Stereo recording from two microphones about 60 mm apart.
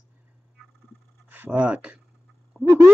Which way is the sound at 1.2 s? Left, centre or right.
Right.